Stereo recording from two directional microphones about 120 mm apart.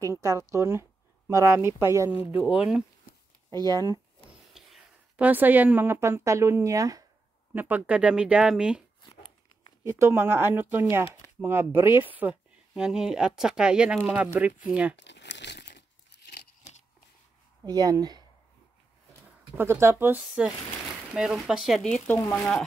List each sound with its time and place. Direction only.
0.0 s speech: 25° right (ahead or behind)
2.4 s speech: 10° right (ahead or behind)
3.5 s speech: 30° right (ahead or behind)
4.6 s a sound: 5° right (ahead or behind)
5.1 s speech: 15° right (ahead or behind); by 7.1 s 30° right (ahead or behind)
7.5 s speech: 15° right (ahead or behind)
9.1 s a sound: 40° left (ahead or behind)
9.8 s speech: 20° right (ahead or behind)
17.6 s speech: 35° right (ahead or behind)
19.5 s speech: 20° right (ahead or behind)
20.2 s speech: 5° right (ahead or behind)
21.8 s speech: 15° left (ahead or behind)
22.3 s speech: 5° left (ahead or behind)